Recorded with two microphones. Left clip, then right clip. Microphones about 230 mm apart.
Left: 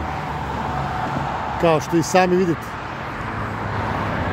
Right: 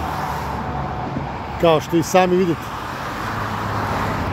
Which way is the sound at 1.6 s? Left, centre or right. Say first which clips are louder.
Right 2 dB; centre.